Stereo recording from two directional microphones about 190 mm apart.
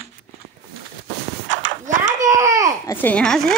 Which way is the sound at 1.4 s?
90° right.